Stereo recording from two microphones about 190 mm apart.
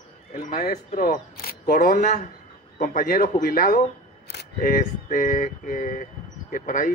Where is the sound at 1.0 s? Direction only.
50° left (ahead or behind).